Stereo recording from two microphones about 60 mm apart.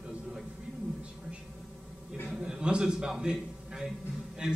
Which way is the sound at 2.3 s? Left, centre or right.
Centre.